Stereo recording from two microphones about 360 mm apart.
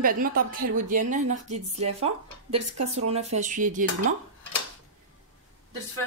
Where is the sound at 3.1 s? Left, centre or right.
Centre.